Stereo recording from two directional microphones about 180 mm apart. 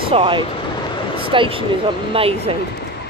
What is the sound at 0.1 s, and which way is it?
Speech, 30° right (ahead or behind).